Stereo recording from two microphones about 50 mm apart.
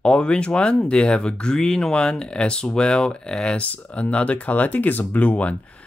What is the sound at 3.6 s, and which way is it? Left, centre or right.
Speech, left.